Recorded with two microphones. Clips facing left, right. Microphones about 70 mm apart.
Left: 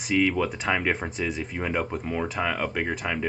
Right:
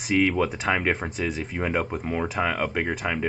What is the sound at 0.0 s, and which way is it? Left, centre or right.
Speech, centre.